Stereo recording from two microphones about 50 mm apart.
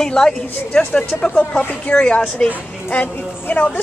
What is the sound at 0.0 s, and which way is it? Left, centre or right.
A woman's voice, centre.